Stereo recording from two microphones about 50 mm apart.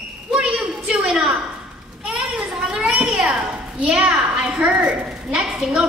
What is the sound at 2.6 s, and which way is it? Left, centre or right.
A child's voice, centre.